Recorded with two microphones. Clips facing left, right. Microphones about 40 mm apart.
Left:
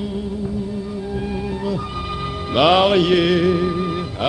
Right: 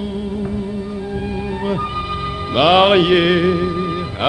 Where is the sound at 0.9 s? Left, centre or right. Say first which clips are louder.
Right 1 dB; centre.